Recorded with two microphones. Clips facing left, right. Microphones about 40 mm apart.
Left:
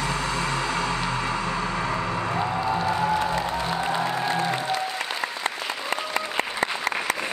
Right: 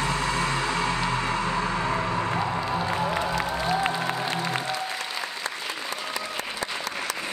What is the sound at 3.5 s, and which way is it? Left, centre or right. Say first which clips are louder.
Music: even; left.